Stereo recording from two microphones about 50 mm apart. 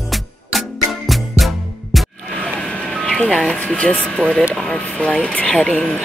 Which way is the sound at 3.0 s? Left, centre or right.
Centre.